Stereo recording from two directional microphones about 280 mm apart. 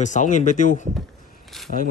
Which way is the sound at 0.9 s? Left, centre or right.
Centre.